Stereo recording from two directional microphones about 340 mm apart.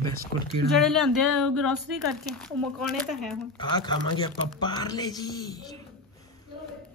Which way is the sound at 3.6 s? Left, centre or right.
Centre.